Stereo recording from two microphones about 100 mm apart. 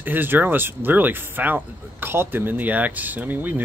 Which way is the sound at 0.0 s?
20° right (ahead or behind).